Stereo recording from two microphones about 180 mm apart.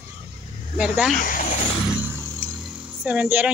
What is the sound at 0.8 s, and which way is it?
Speech, 5° right (ahead or behind).